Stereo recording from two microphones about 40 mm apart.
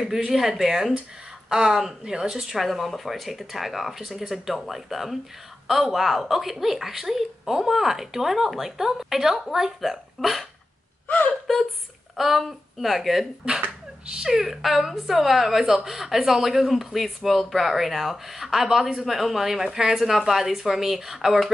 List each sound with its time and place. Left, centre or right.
0.3 s speech: centre
2.5 s speech: centre
11.1 s speech: left
12.2 s speech: centre
14.0 s speech: right
14.3 s speech: centre